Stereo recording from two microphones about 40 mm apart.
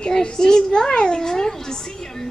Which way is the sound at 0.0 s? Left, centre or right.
Centre.